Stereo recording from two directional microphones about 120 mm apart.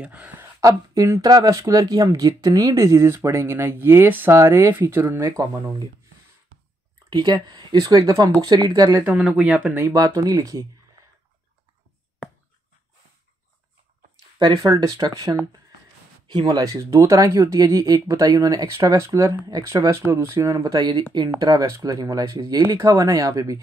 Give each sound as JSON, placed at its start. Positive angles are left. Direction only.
{"t": 0.0, "sound": "speech", "side_deg": -10}
{"t": 0.6, "sound": "speech", "side_deg": -30}
{"t": 5.3, "sound": "speech", "side_deg": -30}
{"t": 7.1, "sound": "speech", "side_deg": -40}
{"t": 8.5, "sound": "speech", "side_deg": -30}
{"t": 9.0, "sound": "speech", "side_deg": -5}
{"t": 9.8, "sound": "speech", "side_deg": -30}
{"t": 14.6, "sound": "speech", "side_deg": -35}